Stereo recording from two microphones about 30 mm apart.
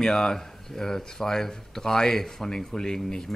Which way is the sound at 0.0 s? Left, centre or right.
Centre.